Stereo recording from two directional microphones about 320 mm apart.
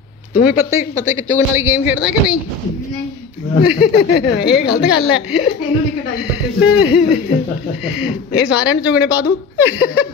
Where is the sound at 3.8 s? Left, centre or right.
Left.